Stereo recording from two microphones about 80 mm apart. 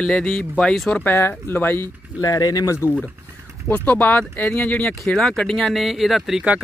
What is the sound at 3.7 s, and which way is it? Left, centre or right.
Speech, left.